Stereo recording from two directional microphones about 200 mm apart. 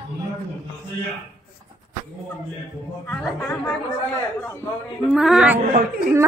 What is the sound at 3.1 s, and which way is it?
Speech, 10° left (ahead or behind).